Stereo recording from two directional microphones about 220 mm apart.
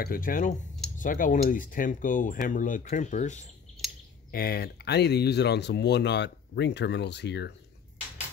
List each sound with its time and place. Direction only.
0.0 s speech: 40° left (ahead or behind)
4.3 s speech: 45° left (ahead or behind)